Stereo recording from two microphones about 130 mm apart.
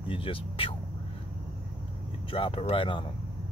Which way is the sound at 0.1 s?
45° left (ahead or behind).